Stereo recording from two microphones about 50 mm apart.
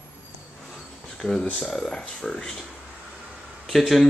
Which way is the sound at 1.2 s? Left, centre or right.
Centre.